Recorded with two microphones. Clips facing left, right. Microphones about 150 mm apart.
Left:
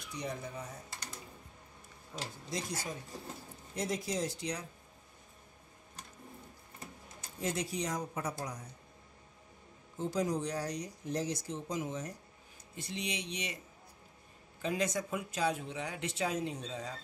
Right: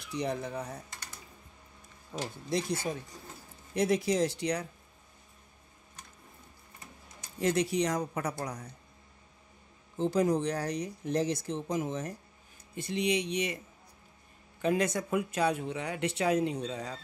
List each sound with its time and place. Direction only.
0.1 s speech: 70° right (ahead or behind)
2.5 s speech: 60° right (ahead or behind)
3.1 s speech: 30° left (ahead or behind)
3.7 s speech: 65° right (ahead or behind)
7.3 s speech: 75° right (ahead or behind)
9.9 s speech: 65° right (ahead or behind)
14.6 s speech: 60° right (ahead or behind)